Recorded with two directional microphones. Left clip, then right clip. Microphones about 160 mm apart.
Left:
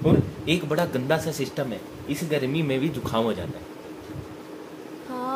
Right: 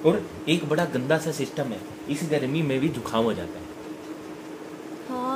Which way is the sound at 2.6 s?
5° left (ahead or behind).